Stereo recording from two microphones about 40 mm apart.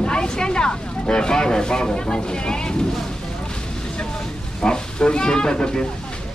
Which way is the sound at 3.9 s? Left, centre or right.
Centre.